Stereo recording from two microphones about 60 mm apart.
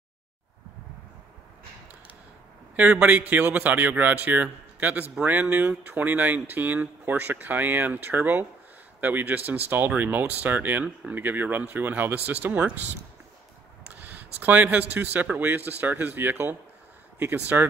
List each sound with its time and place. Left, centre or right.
2.7 s a man's voice: right
13.9 s speech: right